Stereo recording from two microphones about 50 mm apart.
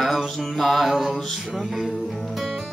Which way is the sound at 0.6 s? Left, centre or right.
Centre.